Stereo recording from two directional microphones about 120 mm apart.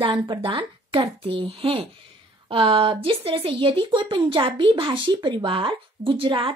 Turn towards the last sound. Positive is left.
turn(degrees=-45)  # may be behind; listen again after turning